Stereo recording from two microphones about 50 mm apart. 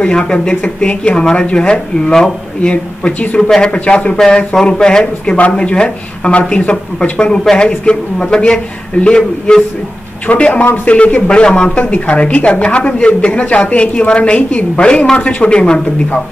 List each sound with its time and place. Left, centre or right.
0.0 s speech: centre
3.7 s speech: left
10.2 s a man's voice: left